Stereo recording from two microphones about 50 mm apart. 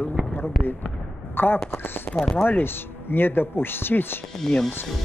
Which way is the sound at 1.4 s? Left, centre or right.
Left.